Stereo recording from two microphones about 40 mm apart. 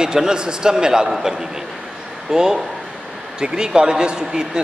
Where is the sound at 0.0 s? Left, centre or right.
Centre.